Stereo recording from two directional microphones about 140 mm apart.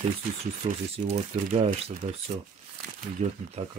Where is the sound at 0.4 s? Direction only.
50° right (ahead or behind).